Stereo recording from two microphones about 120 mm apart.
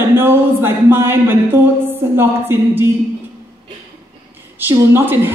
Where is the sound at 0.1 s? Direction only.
20° right (ahead or behind).